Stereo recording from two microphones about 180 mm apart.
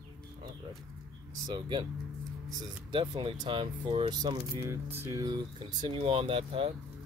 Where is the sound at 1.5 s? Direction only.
25° right (ahead or behind).